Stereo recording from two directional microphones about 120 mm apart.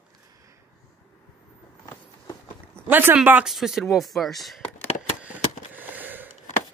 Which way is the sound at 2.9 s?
15° right (ahead or behind).